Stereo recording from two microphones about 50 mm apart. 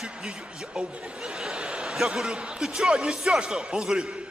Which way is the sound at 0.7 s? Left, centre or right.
Centre.